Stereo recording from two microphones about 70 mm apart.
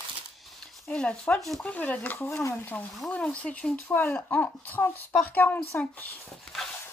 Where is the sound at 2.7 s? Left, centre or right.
Left.